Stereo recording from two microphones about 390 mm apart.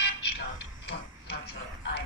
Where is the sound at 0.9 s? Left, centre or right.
Left.